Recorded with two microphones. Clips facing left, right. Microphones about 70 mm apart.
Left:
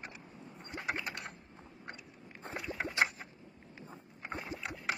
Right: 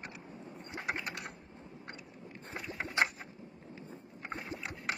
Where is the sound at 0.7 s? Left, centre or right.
Centre.